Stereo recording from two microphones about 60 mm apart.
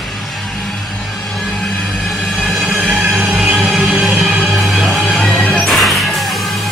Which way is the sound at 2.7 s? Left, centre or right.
Centre.